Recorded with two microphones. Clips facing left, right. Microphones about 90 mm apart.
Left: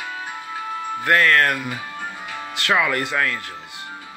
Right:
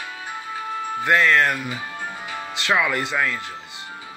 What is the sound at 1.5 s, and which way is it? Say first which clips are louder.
Speech: left 1 dB; centre (ahead or behind).